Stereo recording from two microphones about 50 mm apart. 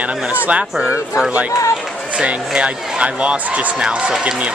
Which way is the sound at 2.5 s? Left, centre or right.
Right.